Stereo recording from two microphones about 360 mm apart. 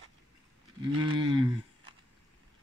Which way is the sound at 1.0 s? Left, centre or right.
Centre.